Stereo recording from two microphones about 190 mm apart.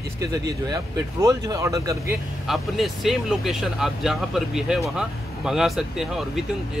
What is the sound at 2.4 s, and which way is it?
Speech, centre (ahead or behind).